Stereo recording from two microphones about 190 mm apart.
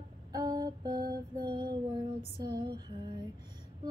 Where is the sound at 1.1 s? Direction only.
25° right (ahead or behind).